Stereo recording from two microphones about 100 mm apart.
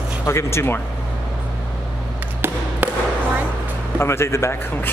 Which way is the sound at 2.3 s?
20° right (ahead or behind).